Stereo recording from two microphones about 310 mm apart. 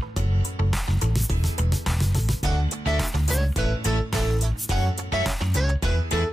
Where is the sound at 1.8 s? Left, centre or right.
Centre.